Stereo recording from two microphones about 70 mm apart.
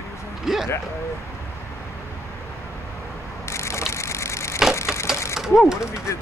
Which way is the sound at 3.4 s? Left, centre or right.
Left.